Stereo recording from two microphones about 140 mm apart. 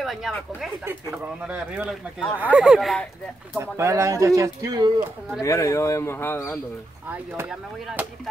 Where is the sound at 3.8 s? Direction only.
20° right (ahead or behind).